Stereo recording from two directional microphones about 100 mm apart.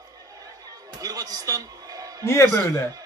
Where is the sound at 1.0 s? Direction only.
40° right (ahead or behind).